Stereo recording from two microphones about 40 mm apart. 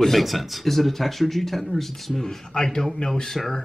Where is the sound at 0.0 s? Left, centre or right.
Centre.